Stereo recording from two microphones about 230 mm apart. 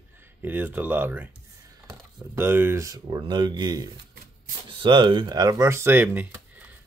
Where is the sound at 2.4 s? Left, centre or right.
Centre.